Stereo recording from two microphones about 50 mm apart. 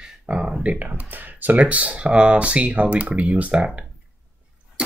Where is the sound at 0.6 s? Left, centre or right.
Right.